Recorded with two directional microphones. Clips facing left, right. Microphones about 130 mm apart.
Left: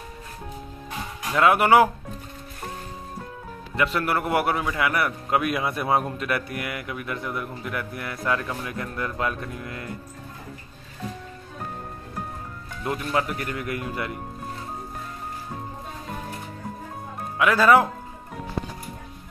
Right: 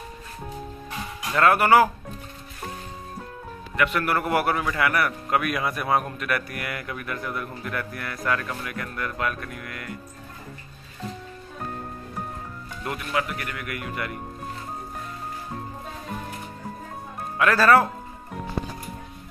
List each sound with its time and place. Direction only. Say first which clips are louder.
1.3 s speech: even; 10° left (ahead or behind)
3.7 s a man's voice: even; 30° left (ahead or behind)
4.1 s a man's voice: even; 20° left (ahead or behind)
12.8 s a man's voice: left 2 dB; 25° left (ahead or behind)
17.4 s speech: even; 15° left (ahead or behind)